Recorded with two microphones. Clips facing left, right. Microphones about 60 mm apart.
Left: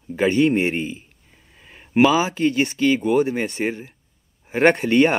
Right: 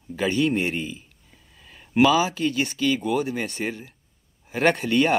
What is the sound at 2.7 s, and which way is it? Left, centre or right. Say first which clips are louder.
Speech: left 5 dB; left.